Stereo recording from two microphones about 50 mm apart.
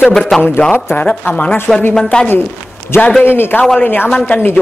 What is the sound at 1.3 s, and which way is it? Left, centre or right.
Speech, left.